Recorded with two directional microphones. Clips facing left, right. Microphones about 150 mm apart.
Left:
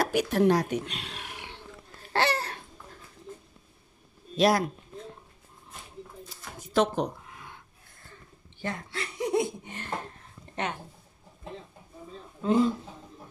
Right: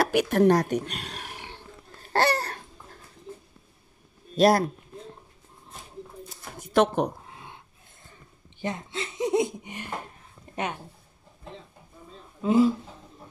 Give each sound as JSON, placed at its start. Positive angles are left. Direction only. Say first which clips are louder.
{"t": 0.0, "sound": "speech", "louder": "right 3 dB", "side_deg": -65}
{"t": 0.4, "sound": "speech", "louder": "right 3 dB", "side_deg": -45}
{"t": 2.1, "sound": "a sound", "louder": "right 3 dB", "side_deg": -40}
{"t": 4.4, "sound": "speech", "louder": "right 3 dB", "side_deg": -40}
{"t": 6.7, "sound": "speech", "louder": "right 3 dB", "side_deg": -60}
{"t": 7.2, "sound": "a sound", "louder": "right 2 dB", "side_deg": -25}
{"t": 12.4, "sound": "speech", "louder": "right 3 dB", "side_deg": -5}